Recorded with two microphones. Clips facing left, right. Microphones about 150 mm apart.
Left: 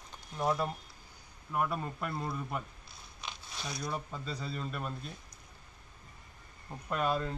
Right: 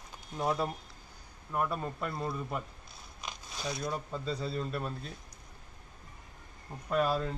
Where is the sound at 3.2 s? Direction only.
40° right (ahead or behind).